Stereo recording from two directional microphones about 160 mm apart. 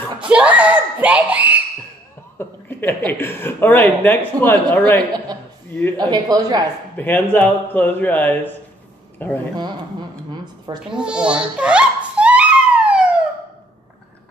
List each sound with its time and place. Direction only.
0.2 s a sound: 5° right (ahead or behind)
2.3 s a woman's voice: 10° left (ahead or behind)
5.9 s speech: 25° right (ahead or behind)
7.0 s a woman's voice: 10° left (ahead or behind)
10.3 s a sound: 25° right (ahead or behind)
10.9 s wail: 5° right (ahead or behind)